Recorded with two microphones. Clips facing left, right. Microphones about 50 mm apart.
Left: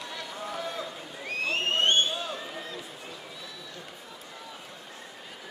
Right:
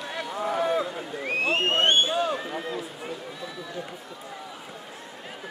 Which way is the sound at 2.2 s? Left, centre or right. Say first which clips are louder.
Right 8 dB; right.